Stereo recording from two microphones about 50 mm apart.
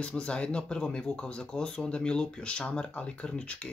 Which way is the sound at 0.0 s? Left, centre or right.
Left.